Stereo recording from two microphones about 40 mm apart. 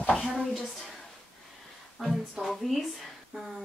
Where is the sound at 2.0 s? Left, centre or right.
Centre.